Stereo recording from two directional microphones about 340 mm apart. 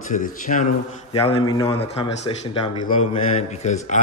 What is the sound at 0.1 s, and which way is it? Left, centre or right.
A man's voice, left.